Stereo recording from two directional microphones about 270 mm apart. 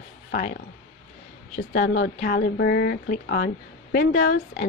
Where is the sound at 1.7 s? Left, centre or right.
Left.